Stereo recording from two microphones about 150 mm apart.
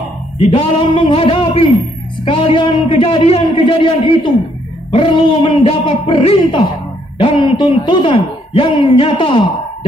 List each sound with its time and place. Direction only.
0.5 s speech: 35° left (ahead or behind)